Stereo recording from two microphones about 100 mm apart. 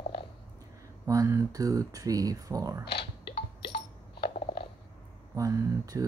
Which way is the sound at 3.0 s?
60° left (ahead or behind).